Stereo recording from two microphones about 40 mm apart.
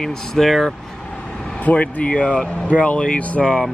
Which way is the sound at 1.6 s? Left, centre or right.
Left.